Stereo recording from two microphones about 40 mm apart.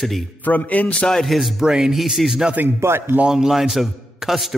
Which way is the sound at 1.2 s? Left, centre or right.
Centre.